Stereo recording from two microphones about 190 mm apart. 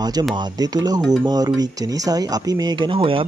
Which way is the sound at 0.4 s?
20° right (ahead or behind).